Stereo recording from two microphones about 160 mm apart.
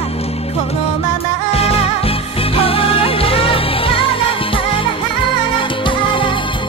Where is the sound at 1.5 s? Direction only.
40° left (ahead or behind).